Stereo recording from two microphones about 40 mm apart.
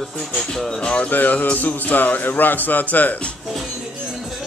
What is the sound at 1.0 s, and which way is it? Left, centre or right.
Speech, left.